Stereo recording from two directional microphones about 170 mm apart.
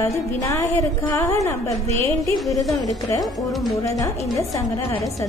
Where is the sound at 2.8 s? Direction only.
20° left (ahead or behind).